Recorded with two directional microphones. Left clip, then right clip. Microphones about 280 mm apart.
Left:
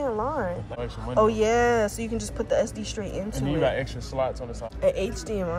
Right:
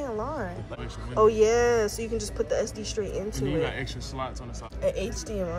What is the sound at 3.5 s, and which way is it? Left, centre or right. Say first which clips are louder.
Speech: left 7 dB; centre.